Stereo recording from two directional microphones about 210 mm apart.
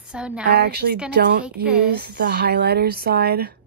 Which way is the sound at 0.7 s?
50° right (ahead or behind).